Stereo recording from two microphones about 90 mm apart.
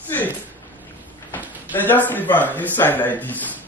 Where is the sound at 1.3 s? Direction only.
20° left (ahead or behind).